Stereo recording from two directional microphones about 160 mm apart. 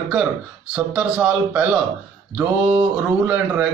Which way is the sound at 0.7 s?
5° right (ahead or behind).